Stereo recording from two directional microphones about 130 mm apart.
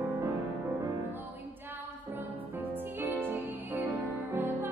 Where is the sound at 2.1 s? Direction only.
15° right (ahead or behind).